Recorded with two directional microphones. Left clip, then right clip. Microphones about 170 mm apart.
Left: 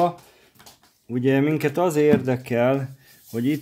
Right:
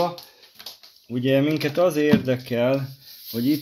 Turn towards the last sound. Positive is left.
turn(degrees=65)  # may be behind; listen again after turning